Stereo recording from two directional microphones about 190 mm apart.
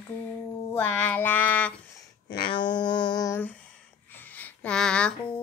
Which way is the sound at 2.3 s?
25° left (ahead or behind).